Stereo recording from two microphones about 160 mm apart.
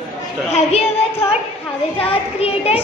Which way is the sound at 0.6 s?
40° left (ahead or behind).